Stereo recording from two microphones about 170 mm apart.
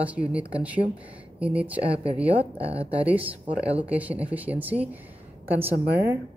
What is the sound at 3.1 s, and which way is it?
Speech, 10° right (ahead or behind).